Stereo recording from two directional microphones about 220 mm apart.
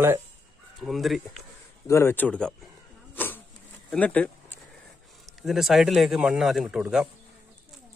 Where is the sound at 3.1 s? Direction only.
10° left (ahead or behind).